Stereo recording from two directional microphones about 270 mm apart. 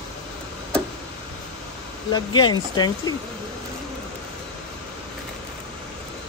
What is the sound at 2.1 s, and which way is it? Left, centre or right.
Speech, centre.